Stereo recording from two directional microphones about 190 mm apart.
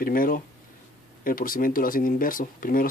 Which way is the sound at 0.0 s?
50° left (ahead or behind).